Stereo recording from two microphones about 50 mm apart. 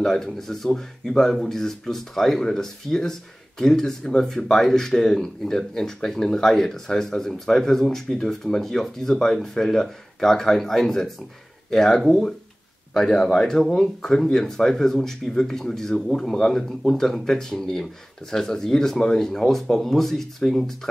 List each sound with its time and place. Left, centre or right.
0.0 s speech: centre